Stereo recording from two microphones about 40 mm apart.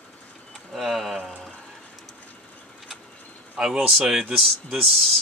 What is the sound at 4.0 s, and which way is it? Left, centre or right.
Speech, centre.